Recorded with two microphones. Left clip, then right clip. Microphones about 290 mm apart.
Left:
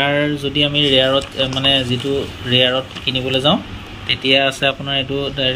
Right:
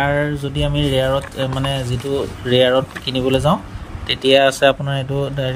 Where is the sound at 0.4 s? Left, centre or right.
Right.